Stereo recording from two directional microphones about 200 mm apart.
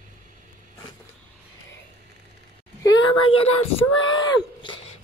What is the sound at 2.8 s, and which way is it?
Speech, 25° left (ahead or behind).